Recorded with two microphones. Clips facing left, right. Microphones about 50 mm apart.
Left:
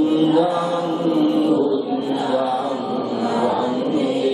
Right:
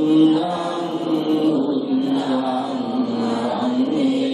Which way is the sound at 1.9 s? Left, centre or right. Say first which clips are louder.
Right 1 dB; centre.